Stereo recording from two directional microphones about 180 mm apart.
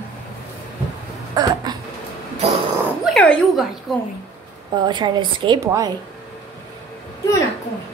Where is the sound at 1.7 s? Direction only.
20° right (ahead or behind).